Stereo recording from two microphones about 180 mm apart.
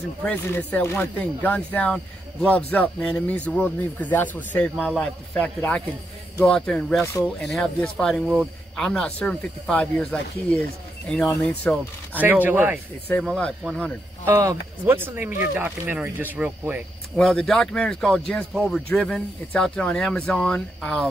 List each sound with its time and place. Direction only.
0.2 s speech: 10° left (ahead or behind)
11.1 s speech: 5° left (ahead or behind)
12.2 s speech: 10° right (ahead or behind)
13.2 s speech: 5° left (ahead or behind)
14.2 s speech: 15° right (ahead or behind)
17.2 s speech: 5° left (ahead or behind)